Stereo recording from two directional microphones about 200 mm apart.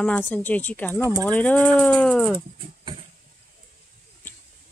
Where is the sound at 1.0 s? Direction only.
15° right (ahead or behind).